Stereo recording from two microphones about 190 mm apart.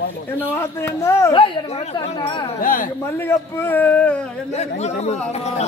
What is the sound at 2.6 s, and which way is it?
Speech, 45° left (ahead or behind).